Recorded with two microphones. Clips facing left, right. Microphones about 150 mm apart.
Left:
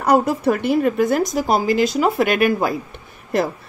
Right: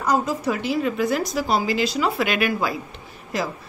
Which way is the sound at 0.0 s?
65° left (ahead or behind).